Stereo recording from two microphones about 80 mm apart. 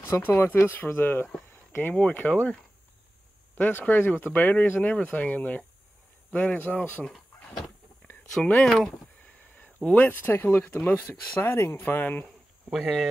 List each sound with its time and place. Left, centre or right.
0.0 s speech: left
3.5 s speech: left
8.6 s speech: centre
9.6 s speech: centre
12.7 s speech: centre